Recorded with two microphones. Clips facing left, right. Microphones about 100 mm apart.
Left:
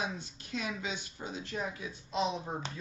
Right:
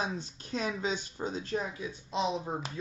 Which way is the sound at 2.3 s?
20° right (ahead or behind).